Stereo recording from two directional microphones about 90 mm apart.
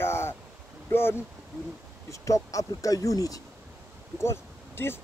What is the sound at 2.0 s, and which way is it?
Speech, 35° left (ahead or behind).